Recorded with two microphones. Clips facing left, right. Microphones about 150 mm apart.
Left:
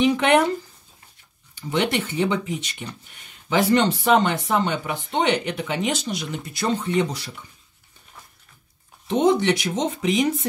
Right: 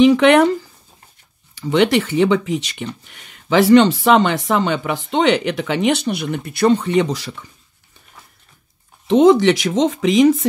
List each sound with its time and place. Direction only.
0.0 s speech: 90° right
1.5 s speech: 90° right
9.0 s speech: 90° right